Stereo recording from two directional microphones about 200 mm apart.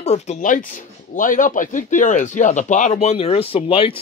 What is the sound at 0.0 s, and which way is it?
Speech, 35° left (ahead or behind).